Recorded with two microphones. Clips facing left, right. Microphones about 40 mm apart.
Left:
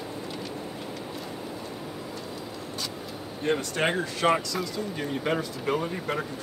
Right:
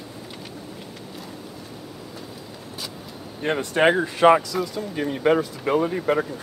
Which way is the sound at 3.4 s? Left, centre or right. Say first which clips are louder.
Right 7 dB; right.